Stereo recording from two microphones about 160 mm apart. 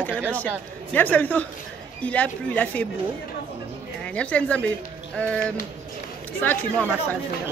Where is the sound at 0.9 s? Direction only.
10° left (ahead or behind).